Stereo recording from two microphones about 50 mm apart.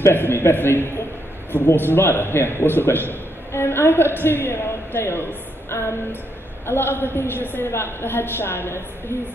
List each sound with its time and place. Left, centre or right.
0.0 s speech: left
5.7 s a sound: left
6.6 s speech: left